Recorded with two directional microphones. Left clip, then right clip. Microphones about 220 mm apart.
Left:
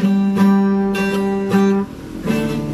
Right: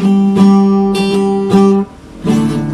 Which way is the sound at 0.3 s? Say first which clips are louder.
Right 6 dB; 15° right (ahead or behind).